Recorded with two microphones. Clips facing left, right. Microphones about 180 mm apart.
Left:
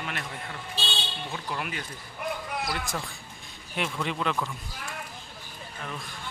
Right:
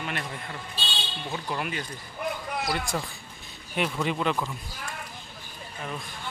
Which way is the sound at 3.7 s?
5° right (ahead or behind).